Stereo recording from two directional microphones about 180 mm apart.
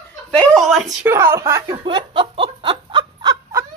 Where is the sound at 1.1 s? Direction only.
15° right (ahead or behind).